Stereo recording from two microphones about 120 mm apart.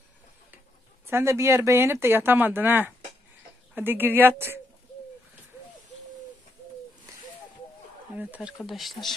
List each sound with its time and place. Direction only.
1.0 s a woman's voice: 20° right (ahead or behind)
8.2 s speech: 10° right (ahead or behind)